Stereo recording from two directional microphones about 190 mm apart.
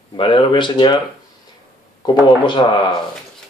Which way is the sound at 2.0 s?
25° left (ahead or behind).